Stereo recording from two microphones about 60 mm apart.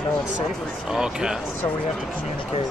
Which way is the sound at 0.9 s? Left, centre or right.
Centre.